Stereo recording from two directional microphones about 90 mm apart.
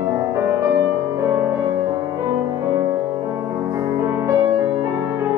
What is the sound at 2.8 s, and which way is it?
Music, 25° right (ahead or behind).